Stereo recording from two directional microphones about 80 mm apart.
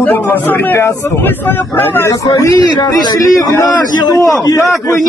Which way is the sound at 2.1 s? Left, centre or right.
Left.